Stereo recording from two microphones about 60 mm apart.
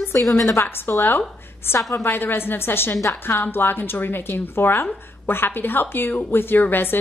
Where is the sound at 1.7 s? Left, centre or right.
Left.